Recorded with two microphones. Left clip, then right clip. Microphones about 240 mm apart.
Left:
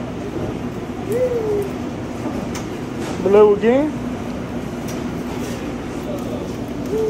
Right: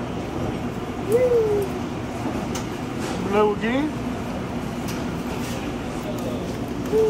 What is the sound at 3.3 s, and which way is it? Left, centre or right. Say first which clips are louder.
Speech: left 9 dB; centre.